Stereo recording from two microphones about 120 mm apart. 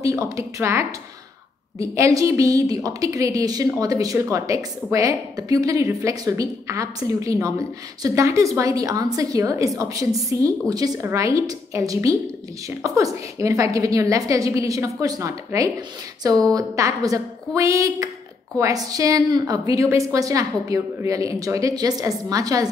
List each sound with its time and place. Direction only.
0.0 s a woman's voice: 25° right (ahead or behind)